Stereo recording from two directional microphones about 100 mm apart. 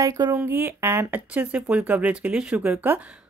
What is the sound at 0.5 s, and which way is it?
A woman's voice, 20° right (ahead or behind).